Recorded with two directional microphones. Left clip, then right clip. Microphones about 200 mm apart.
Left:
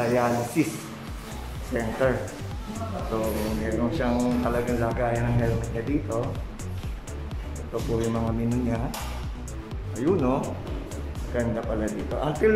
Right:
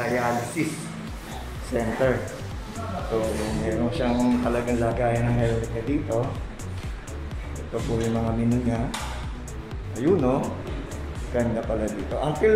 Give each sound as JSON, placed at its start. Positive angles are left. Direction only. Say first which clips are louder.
{"t": 0.0, "sound": "speech", "louder": "left 1 dB", "side_deg": 15}
{"t": 1.7, "sound": "a man's voice", "louder": "right 1 dB", "side_deg": 0}
{"t": 3.2, "sound": "a man's voice", "louder": "right 1 dB", "side_deg": 0}
{"t": 8.0, "sound": "a man's voice", "louder": "right 2 dB", "side_deg": 0}
{"t": 9.9, "sound": "a man's voice", "louder": "right 2 dB", "side_deg": 0}